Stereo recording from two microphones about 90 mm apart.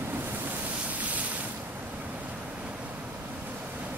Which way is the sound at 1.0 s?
15° right (ahead or behind).